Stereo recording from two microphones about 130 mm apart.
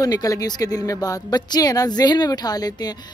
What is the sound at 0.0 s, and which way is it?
Speech, 30° left (ahead or behind).